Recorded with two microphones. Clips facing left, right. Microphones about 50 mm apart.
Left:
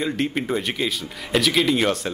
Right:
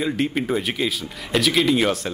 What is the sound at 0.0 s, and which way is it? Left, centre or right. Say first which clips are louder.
Speech: right 1 dB; centre.